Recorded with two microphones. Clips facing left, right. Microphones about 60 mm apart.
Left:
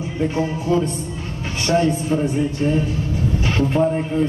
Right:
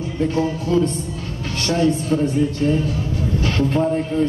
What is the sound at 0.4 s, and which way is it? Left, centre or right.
Speech, centre.